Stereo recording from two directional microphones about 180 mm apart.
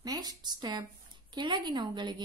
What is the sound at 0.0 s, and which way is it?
A woman's voice, 20° right (ahead or behind).